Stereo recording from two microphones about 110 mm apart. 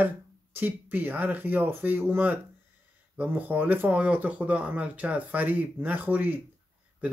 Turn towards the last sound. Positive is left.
turn(degrees=-15)  # may be behind; listen again after turning